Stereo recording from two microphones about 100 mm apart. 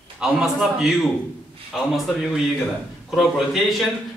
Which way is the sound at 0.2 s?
5° right (ahead or behind).